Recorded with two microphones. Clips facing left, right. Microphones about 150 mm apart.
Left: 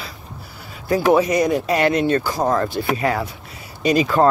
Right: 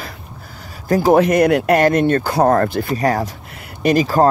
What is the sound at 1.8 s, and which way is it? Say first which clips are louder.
Speech: right 3 dB; 50° right (ahead or behind).